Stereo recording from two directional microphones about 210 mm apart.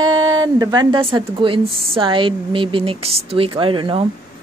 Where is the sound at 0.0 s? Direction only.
20° right (ahead or behind).